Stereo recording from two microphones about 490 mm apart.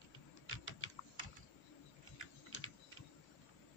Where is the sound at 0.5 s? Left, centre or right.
Left.